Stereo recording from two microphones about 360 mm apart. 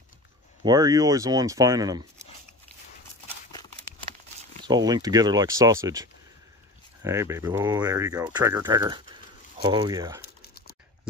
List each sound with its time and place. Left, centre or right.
0.7 s speech: centre
4.6 s speech: centre
9.1 s bird: centre
10.2 s a sound: left